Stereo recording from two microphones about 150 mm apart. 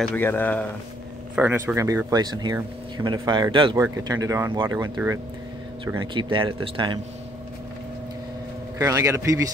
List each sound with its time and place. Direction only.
0.0 s speech: 10° left (ahead or behind)
1.3 s speech: 10° right (ahead or behind)
2.0 s speech: 25° right (ahead or behind)
8.7 s speech: 20° right (ahead or behind)